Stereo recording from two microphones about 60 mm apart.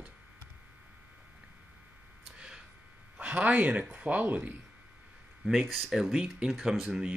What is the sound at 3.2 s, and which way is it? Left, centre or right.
Speech, right.